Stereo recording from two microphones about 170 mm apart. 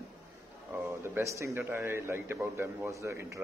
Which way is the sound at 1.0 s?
15° right (ahead or behind).